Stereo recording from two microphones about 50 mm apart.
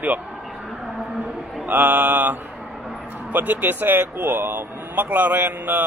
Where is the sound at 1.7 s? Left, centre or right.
Right.